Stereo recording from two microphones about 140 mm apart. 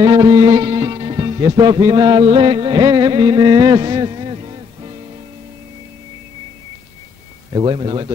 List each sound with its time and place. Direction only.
0.0 s music: 35° right (ahead or behind)
7.5 s a man's voice: 35° right (ahead or behind)